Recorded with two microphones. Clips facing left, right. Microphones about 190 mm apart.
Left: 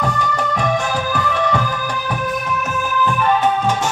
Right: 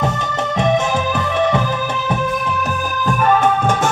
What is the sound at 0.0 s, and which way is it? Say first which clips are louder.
Music: even; 25° right (ahead or behind).